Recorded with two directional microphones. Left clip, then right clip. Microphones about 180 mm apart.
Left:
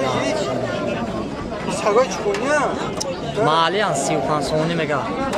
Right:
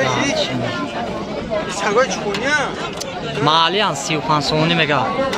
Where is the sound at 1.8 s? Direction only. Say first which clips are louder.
Left 1 dB; 20° left (ahead or behind).